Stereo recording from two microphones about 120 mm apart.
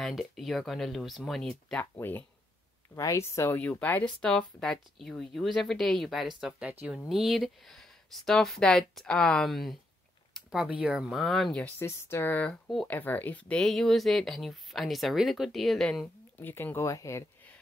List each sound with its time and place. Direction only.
0.0 s speech: centre (ahead or behind)
1.8 s speech: 15° left (ahead or behind); by 6.2 s centre (ahead or behind)
6.4 s speech: 15° right (ahead or behind)
7.1 s speech: centre (ahead or behind)
11.8 s speech: 20° left (ahead or behind); by 16.1 s 5° left (ahead or behind)
16.3 s speech: 15° left (ahead or behind)